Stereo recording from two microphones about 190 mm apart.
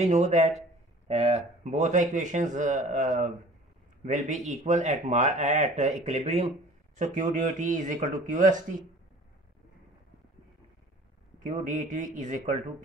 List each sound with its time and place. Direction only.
0.0 s a man's voice: 40° right (ahead or behind)
11.4 s speech: 40° right (ahead or behind)